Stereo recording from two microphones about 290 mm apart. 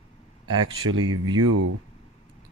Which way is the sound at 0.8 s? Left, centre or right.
Right.